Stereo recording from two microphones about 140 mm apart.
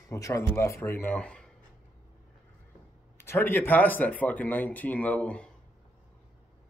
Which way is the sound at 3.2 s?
15° left (ahead or behind).